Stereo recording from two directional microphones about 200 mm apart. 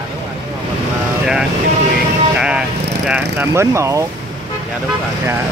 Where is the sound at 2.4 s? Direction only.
5° right (ahead or behind).